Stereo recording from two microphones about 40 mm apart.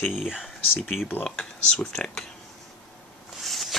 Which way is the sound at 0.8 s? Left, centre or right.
Centre.